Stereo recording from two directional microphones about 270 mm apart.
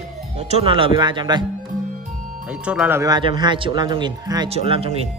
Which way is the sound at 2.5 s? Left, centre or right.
Centre.